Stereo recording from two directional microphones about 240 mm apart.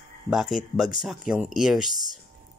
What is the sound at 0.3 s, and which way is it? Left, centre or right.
Speech, centre.